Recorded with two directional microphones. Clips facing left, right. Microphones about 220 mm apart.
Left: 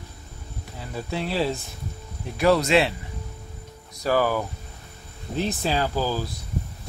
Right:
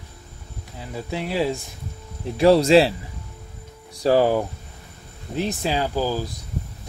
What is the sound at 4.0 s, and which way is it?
Speech, 30° right (ahead or behind).